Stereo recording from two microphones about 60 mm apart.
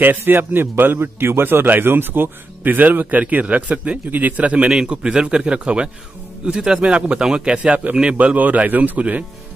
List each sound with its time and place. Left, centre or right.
0.2 s a man's voice: right